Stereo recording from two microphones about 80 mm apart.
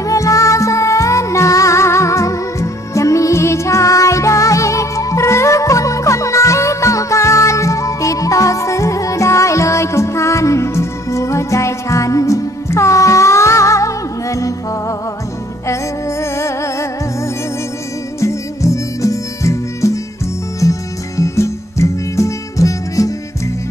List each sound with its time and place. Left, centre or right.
0.0 s music: left
18.2 s music: left
21.2 s music: left